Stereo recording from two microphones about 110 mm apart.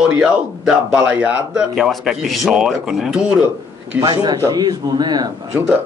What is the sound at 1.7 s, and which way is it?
Speech, centre (ahead or behind).